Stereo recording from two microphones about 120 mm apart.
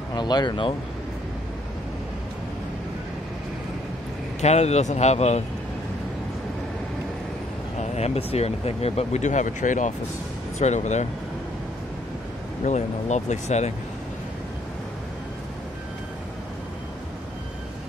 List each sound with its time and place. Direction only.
0.1 s speech: 35° left (ahead or behind)
4.4 s speech: 65° left (ahead or behind)
7.8 s speech: 65° left (ahead or behind); by 9.9 s 90° left
10.6 s speech: 75° left (ahead or behind)
12.6 s speech: 75° left (ahead or behind)